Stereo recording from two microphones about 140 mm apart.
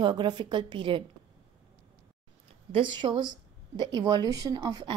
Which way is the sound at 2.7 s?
35° right (ahead or behind).